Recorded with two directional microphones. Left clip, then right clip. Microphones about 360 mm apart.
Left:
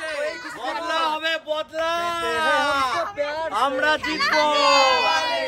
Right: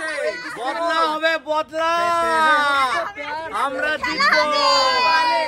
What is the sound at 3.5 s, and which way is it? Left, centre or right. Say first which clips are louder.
Speech: left 1 dB; left.